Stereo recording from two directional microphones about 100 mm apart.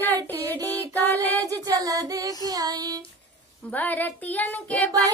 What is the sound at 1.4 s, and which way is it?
Child singing, 35° right (ahead or behind).